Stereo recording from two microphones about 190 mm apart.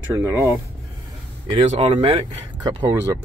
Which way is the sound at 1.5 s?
30° right (ahead or behind).